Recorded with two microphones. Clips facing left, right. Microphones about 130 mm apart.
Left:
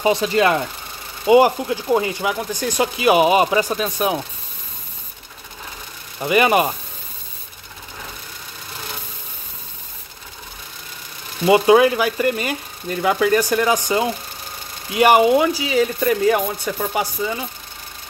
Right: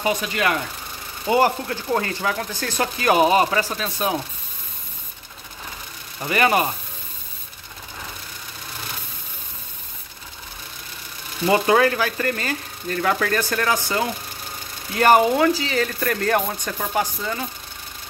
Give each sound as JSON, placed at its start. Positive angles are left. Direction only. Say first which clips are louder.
{"t": 0.0, "sound": "speech", "louder": "left 6 dB", "side_deg": 30}
{"t": 1.2, "sound": "speech", "louder": "left 6 dB", "side_deg": 15}
{"t": 6.2, "sound": "speech", "louder": "left 4 dB", "side_deg": 15}
{"t": 11.4, "sound": "speech", "louder": "left 5 dB", "side_deg": 15}